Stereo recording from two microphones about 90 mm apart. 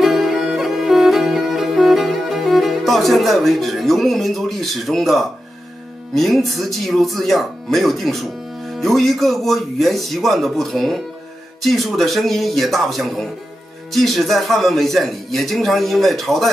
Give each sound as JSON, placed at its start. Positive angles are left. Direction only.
{"t": 0.0, "sound": "music", "side_deg": 0}
{"t": 6.1, "sound": "speech", "side_deg": 0}